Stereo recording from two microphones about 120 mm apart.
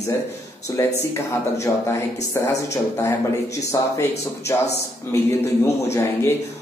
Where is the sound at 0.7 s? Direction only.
30° left (ahead or behind).